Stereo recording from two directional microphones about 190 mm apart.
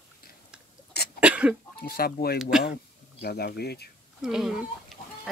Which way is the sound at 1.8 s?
50° left (ahead or behind).